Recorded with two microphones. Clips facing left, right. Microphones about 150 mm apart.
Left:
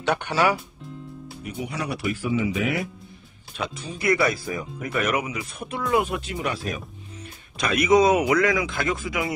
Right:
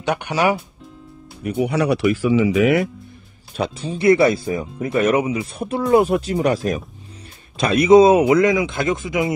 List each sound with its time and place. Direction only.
0.0 s speech: 15° right (ahead or behind)
1.4 s speech: 65° right (ahead or behind)
3.5 s speech: 30° right (ahead or behind)
7.5 s speech: 30° right (ahead or behind)